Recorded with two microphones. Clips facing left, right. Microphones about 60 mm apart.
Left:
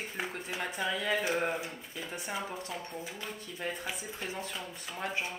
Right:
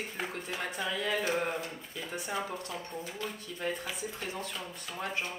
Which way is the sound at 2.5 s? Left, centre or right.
Centre.